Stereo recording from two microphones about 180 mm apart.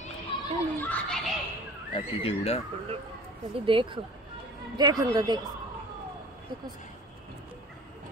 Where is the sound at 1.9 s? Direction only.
30° left (ahead or behind).